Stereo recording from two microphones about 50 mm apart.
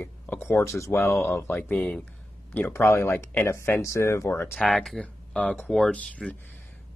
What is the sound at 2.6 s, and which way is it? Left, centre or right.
Speech, left.